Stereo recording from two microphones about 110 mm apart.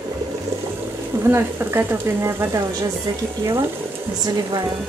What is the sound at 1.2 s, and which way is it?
Speech, 20° right (ahead or behind).